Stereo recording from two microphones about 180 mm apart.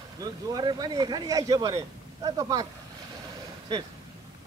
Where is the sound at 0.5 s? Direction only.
20° right (ahead or behind).